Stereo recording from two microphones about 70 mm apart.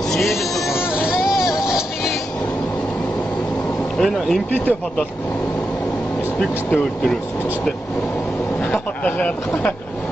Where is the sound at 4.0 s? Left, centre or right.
Centre.